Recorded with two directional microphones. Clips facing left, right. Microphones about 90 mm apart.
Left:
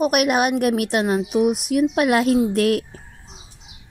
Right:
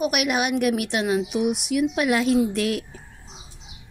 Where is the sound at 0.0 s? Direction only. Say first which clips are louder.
Left 5 dB; 45° left (ahead or behind).